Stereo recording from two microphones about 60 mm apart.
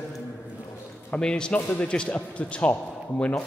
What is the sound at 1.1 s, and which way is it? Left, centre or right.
Speech, centre.